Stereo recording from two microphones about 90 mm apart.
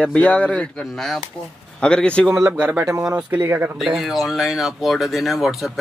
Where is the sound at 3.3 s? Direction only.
25° right (ahead or behind).